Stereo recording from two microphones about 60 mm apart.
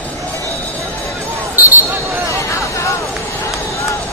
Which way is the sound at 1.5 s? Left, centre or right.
Right.